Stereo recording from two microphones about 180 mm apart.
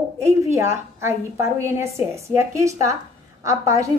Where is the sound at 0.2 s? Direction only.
15° right (ahead or behind).